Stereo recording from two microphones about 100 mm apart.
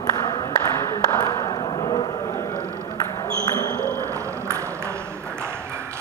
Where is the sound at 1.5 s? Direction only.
55° left (ahead or behind).